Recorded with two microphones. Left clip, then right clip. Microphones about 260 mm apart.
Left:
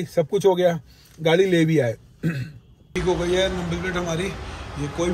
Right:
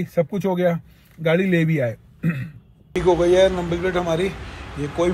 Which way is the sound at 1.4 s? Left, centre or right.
Centre.